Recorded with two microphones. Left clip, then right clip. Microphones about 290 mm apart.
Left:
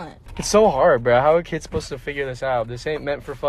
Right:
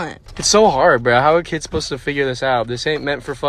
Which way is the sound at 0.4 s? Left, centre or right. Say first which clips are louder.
Right 3 dB; centre.